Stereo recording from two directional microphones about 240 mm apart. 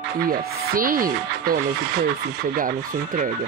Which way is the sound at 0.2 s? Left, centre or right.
Right.